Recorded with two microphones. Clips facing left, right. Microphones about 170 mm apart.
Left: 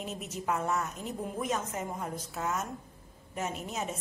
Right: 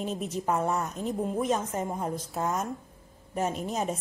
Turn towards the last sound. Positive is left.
turn(degrees=-35)  # may be behind; listen again after turning